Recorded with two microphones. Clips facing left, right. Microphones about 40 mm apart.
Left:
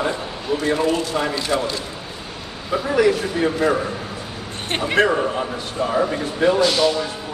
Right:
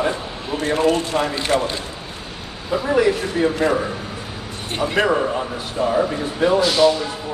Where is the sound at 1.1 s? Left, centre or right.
Right.